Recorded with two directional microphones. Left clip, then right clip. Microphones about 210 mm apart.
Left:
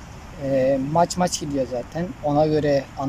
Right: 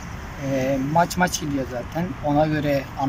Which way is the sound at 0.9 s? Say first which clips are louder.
Even; 30° left (ahead or behind).